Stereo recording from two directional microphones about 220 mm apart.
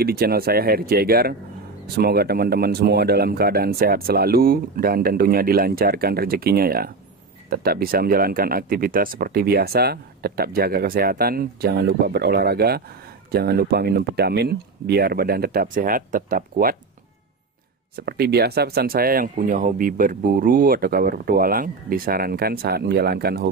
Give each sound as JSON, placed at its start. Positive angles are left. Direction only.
{"t": 0.0, "sound": "speech", "side_deg": -45}
{"t": 17.9, "sound": "speech", "side_deg": -45}